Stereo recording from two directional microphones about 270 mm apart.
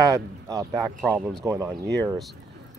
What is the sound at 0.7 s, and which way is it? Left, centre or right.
Speech, centre.